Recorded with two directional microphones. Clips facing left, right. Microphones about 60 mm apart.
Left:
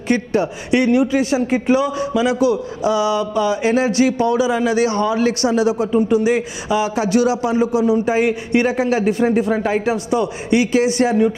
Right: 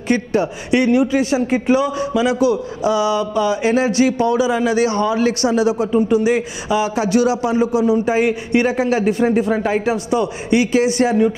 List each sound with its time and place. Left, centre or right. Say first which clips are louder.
0.1 s speech: even; centre